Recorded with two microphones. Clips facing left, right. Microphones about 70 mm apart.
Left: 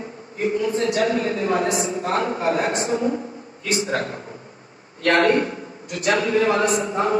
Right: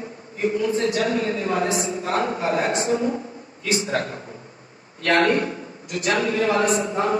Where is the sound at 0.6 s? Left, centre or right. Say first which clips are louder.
Left 2 dB; left.